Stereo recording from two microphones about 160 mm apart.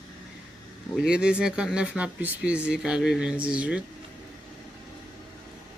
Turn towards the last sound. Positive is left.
turn(degrees=-5)  # may be behind; listen again after turning